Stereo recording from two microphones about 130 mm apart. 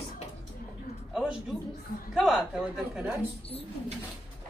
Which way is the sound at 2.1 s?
5° right (ahead or behind).